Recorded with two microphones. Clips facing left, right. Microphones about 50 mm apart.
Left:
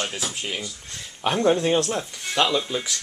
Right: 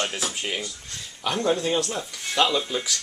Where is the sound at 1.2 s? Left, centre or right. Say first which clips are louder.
Left 3 dB; left.